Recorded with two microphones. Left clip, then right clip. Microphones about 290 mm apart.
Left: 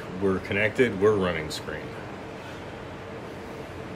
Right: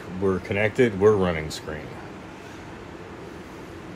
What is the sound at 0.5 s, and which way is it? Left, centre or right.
Speech, centre.